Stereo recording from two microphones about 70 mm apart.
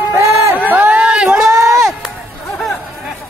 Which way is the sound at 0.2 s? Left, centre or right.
Right.